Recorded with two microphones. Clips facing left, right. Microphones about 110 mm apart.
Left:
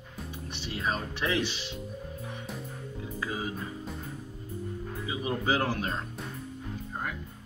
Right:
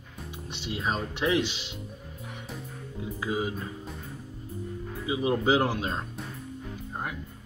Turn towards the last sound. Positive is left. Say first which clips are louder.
# right 3 dB
turn(degrees=-20)  # may be behind; listen again after turning